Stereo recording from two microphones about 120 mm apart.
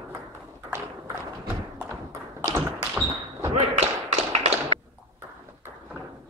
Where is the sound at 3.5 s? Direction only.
70° right (ahead or behind).